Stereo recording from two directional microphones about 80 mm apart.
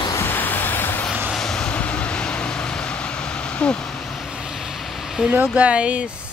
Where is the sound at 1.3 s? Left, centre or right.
Centre.